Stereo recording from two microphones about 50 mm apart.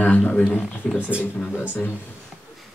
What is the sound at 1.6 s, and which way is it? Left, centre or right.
Speech, left.